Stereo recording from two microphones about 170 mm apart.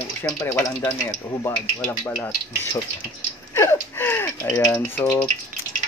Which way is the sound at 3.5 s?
15° left (ahead or behind).